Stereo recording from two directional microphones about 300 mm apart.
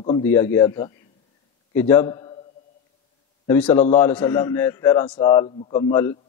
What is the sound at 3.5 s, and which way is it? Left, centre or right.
A man's voice, centre.